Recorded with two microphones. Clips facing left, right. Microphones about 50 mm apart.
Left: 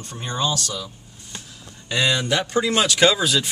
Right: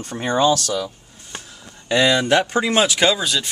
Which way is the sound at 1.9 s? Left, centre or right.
Right.